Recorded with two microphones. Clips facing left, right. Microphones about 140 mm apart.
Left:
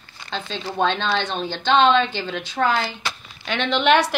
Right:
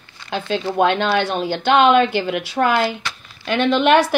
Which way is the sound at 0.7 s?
10° right (ahead or behind).